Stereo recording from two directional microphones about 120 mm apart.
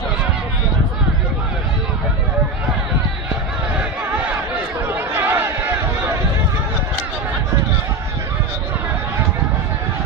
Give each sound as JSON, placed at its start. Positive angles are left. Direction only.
{"t": 3.7, "sound": "battle cry", "side_deg": -10}
{"t": 4.8, "sound": "chatter", "side_deg": -20}